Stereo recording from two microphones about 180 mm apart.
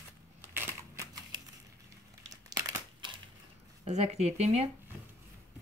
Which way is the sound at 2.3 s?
20° right (ahead or behind).